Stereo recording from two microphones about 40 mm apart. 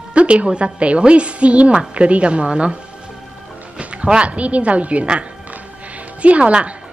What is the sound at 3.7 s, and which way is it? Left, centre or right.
A woman's voice, right.